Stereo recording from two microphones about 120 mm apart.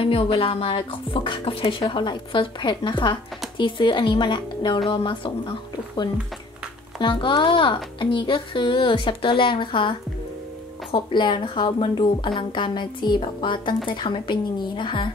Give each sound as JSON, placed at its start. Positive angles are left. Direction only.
{"t": 0.0, "sound": "speech", "side_deg": 50}